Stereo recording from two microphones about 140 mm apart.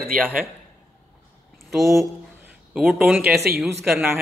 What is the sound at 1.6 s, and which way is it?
A man's voice, centre (ahead or behind).